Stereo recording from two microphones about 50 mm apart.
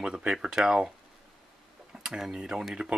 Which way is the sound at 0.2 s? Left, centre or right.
Centre.